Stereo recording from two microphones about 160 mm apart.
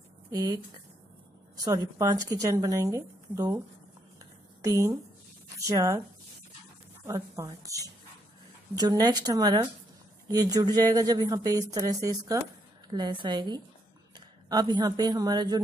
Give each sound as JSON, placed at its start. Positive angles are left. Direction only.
{"t": 0.3, "sound": "speech", "side_deg": -20}
{"t": 1.6, "sound": "speech", "side_deg": -20}
{"t": 4.2, "sound": "a sound", "side_deg": -20}
{"t": 5.6, "sound": "speech", "side_deg": -20}
{"t": 7.1, "sound": "a woman's voice", "side_deg": -20}